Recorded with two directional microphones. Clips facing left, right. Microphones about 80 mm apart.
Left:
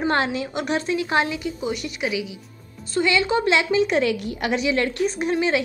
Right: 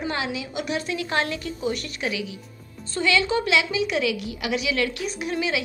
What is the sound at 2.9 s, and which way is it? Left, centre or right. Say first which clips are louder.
A woman's voice: left 2 dB; left.